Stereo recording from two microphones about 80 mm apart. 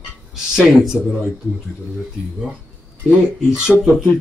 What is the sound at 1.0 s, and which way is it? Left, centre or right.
Speech, centre.